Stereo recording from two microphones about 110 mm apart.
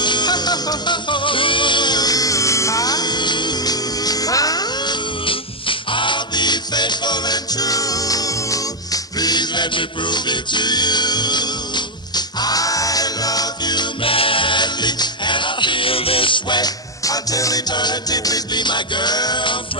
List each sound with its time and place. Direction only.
0.0 s music: 40° left (ahead or behind)
5.2 s music: 50° left (ahead or behind)
14.0 s music: 55° left (ahead or behind)